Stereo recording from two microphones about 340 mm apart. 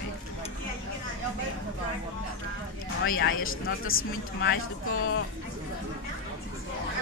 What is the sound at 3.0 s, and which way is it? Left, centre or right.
Speech, left.